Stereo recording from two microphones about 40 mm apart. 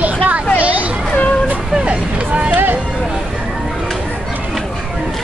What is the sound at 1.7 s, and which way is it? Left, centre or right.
Vehicle, right.